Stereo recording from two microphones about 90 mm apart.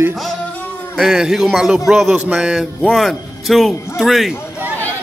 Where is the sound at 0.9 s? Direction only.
5° right (ahead or behind).